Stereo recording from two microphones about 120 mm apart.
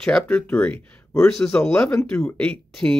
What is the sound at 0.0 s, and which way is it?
Speech, 10° left (ahead or behind).